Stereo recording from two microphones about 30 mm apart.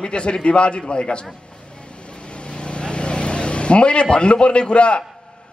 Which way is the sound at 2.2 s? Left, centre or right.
Left.